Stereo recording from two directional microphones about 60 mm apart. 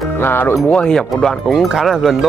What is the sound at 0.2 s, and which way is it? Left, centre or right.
Speech, left.